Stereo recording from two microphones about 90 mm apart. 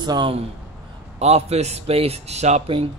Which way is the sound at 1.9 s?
90° right.